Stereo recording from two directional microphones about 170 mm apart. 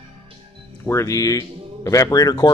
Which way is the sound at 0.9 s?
20° left (ahead or behind).